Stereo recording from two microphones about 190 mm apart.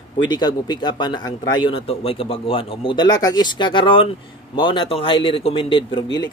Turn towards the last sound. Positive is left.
turn(degrees=25)  # may be behind; listen again after turning